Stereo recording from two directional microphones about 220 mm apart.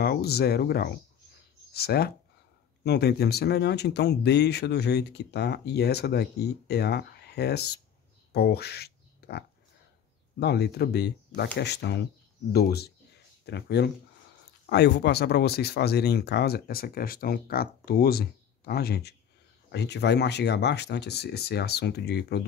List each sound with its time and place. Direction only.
0.0 s speech: 45° left (ahead or behind)
10.4 s speech: 50° left (ahead or behind)